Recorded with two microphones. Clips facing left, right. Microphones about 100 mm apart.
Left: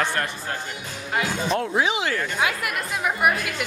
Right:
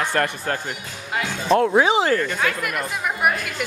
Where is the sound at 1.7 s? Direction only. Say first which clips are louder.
Right 6 dB; 35° right (ahead or behind).